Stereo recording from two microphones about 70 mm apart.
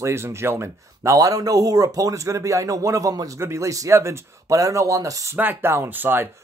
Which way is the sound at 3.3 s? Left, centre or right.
Right.